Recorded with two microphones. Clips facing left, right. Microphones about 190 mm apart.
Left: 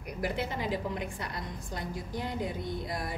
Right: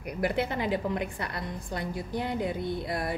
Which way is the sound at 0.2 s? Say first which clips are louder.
Right 5 dB; 65° right (ahead or behind).